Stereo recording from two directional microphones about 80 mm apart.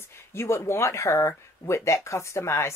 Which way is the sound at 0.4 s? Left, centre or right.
Left.